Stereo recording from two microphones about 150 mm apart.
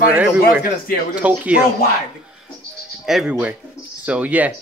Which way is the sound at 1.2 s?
10° right (ahead or behind).